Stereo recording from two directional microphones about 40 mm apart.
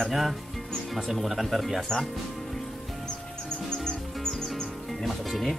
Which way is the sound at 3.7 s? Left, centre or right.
Centre.